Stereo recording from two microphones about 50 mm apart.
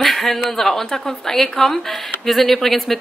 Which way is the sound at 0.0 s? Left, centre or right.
Centre.